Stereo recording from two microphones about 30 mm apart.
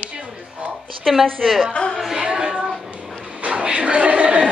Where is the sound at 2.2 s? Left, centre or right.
Right.